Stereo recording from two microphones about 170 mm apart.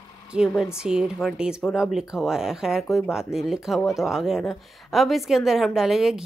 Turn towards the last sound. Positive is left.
turn(degrees=0)  # may be behind; listen again after turning